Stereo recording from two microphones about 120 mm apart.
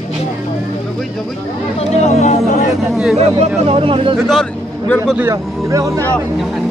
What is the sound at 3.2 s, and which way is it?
Speech, 55° right (ahead or behind).